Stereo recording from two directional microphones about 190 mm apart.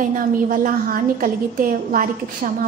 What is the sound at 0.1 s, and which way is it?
A woman's voice, 45° right (ahead or behind).